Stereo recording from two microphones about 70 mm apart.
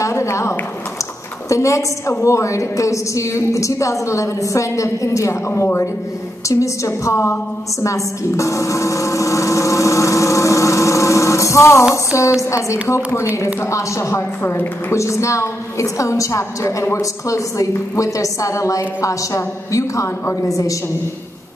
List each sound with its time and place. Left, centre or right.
0.0 s a sound: left
1.5 s a woman's voice: left
6.5 s a woman's voice: left
7.8 s a sound: left
11.9 s a woman's voice: left
14.4 s a woman's voice: left
14.9 s a woman's voice: left